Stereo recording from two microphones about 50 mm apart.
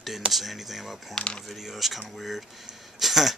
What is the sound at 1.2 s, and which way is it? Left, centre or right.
Speech, centre.